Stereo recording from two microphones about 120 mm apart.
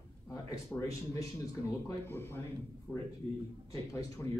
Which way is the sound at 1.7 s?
25° left (ahead or behind).